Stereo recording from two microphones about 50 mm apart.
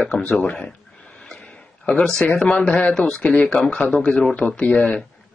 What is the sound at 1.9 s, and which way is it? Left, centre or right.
Speech, left.